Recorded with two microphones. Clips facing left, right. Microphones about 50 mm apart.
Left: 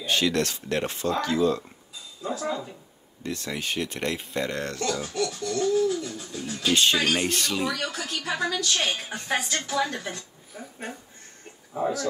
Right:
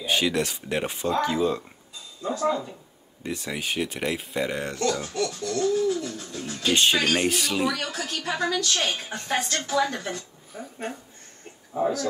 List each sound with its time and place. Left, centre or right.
0.0 s speech: centre
1.2 s speech: centre
3.3 s a woman's voice: centre
6.6 s a woman's voice: centre
11.7 s a woman's voice: centre